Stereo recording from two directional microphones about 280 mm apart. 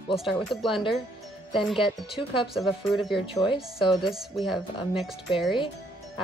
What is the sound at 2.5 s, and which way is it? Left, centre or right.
Speech, centre.